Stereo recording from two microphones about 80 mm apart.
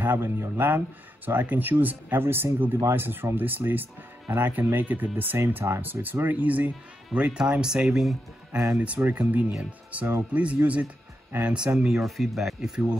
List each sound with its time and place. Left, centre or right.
0.0 s speech: right; by 8.2 s centre
8.5 s speech: right
8.8 s speech: centre